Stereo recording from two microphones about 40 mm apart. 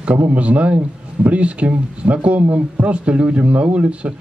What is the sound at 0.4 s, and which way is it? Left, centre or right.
Speech, right.